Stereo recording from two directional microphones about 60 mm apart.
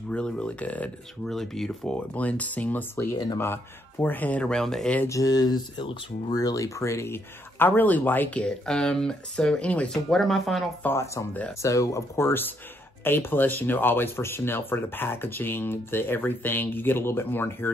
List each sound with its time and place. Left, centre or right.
0.1 s speech: centre
1.3 s speech: centre
2.1 s speech: left
4.4 s speech: centre
5.0 s speech: left
7.5 s speech: left
8.4 s speech: centre
10.8 s speech: left
11.6 s speech: left
12.3 s speech: left